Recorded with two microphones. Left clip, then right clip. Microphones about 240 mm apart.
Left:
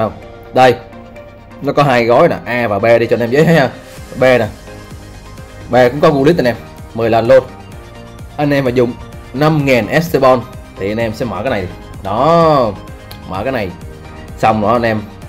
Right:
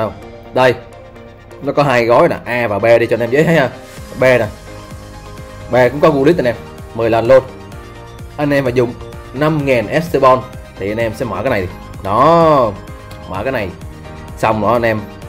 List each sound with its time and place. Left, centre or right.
1.7 s speech: centre
5.7 s speech: centre
11.4 s speech: right; by 15.0 s centre